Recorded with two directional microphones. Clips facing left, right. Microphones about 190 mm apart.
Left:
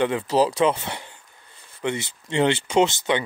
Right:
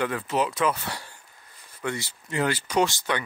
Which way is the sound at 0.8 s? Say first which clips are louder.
Left 2 dB; 20° left (ahead or behind).